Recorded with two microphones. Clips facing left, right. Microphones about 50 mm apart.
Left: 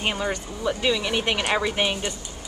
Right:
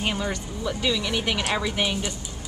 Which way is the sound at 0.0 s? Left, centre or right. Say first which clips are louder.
Left 1 dB; centre.